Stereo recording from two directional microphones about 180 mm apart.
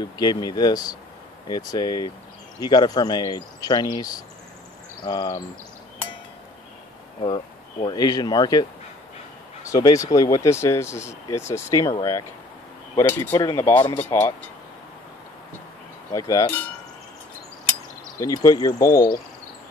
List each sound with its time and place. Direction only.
0.0 s speech: 20° left (ahead or behind)
7.2 s speech: 25° left (ahead or behind)
9.7 s speech: 20° left (ahead or behind)
16.1 s speech: 15° left (ahead or behind)
18.2 s speech: 20° left (ahead or behind)